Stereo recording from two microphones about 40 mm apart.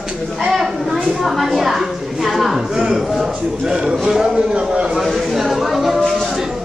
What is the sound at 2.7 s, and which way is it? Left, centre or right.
A man's voice, centre.